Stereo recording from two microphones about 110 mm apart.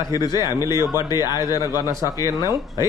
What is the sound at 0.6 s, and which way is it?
Speech, 25° right (ahead or behind).